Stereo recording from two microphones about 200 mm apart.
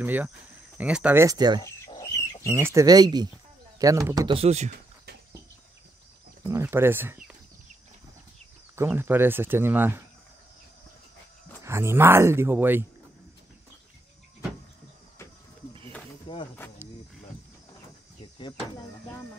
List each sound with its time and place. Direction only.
0.0 s speech: 10° right (ahead or behind)
1.6 s wild animals: 15° left (ahead or behind)
2.4 s speech: 15° right (ahead or behind); by 4.7 s 35° right (ahead or behind)
6.4 s speech: 15° right (ahead or behind)
8.7 s speech: 10° right (ahead or behind)
11.6 s speech: 15° right (ahead or behind)
16.3 s insect: 25° left (ahead or behind)